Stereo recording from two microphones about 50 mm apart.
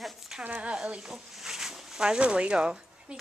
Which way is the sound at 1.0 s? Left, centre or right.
Centre.